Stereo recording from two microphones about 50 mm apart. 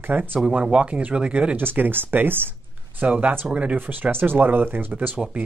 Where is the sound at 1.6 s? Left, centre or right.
Right.